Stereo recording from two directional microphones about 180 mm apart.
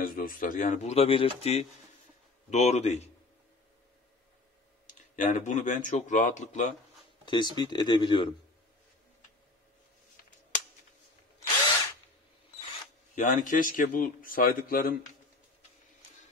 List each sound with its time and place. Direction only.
0.0 s speech: 50° left (ahead or behind)
5.1 s a man's voice: 45° left (ahead or behind)
7.2 s speech: 25° left (ahead or behind)
13.1 s a man's voice: 45° left (ahead or behind)